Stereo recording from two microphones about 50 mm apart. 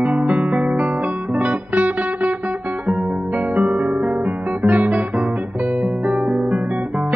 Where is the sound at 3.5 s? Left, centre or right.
Right.